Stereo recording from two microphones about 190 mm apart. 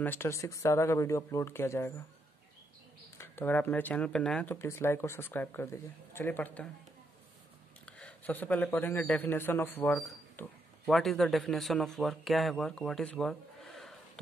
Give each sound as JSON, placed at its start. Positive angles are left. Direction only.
{"t": 0.0, "sound": "speech", "side_deg": 10}
{"t": 3.2, "sound": "speech", "side_deg": 10}
{"t": 7.8, "sound": "a man's voice", "side_deg": 5}